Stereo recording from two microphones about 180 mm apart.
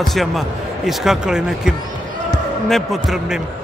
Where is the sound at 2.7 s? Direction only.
Centre (ahead or behind).